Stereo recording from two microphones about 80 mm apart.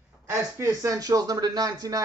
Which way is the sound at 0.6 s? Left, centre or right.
Right.